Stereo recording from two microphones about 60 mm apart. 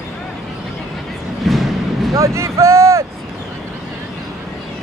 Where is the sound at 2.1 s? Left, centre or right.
Right.